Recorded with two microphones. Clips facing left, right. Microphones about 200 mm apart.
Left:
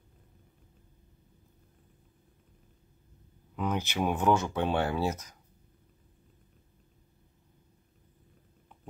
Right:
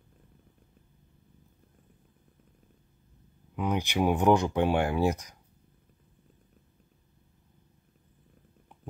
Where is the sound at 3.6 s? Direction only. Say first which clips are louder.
Right 3 dB; 15° right (ahead or behind).